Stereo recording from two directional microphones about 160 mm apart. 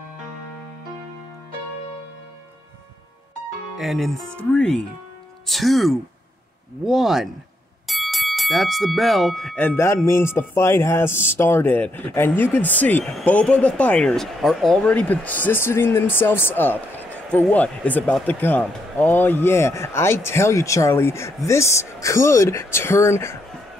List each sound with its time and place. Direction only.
3.7 s speech: centre (ahead or behind); by 23.3 s 15° left (ahead or behind)